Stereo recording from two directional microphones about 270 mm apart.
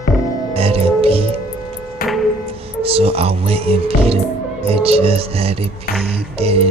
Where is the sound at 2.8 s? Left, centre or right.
Right.